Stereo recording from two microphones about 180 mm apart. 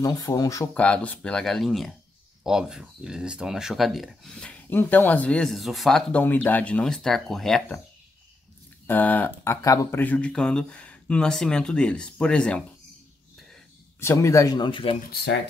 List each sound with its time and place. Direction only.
0.0 s speech: 20° left (ahead or behind); by 7.8 s 5° left (ahead or behind)
8.8 s speech: 10° left (ahead or behind)
13.9 s speech: 15° left (ahead or behind)
15.0 s speech: 65° left (ahead or behind)